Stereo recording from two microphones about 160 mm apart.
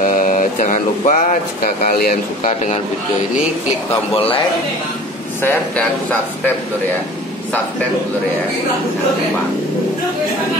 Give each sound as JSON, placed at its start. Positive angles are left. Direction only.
{"t": 0.0, "sound": "mantra", "side_deg": 55}
{"t": 1.6, "sound": "speech", "side_deg": 70}
{"t": 4.1, "sound": "speech", "side_deg": 35}
{"t": 5.4, "sound": "speech", "side_deg": 10}